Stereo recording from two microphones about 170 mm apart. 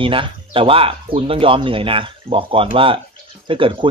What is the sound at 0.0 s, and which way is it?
Speech, 30° right (ahead or behind).